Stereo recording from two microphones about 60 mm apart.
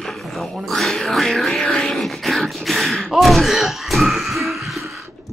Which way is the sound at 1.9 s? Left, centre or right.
Centre.